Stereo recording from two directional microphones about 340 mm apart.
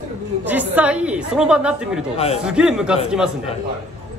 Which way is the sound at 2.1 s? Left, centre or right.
Centre.